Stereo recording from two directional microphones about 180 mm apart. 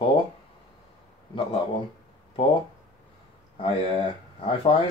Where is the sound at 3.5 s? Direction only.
30° left (ahead or behind).